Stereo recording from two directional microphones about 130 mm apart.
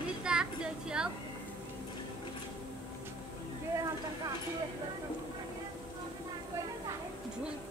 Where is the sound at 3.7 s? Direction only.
25° right (ahead or behind).